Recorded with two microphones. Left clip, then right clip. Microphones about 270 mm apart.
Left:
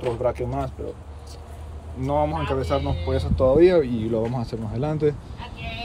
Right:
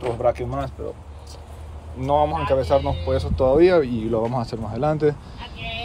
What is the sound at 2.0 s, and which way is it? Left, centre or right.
Speech, centre.